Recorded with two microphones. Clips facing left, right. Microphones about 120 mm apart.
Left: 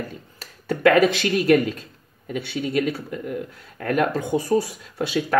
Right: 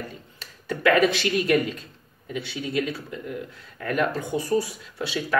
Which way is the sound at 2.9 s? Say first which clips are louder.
Left 5 dB; 50° left (ahead or behind).